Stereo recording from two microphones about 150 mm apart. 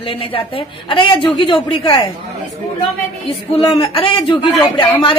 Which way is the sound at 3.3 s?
35° left (ahead or behind).